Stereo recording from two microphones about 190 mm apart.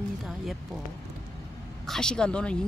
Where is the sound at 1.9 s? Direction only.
5° left (ahead or behind).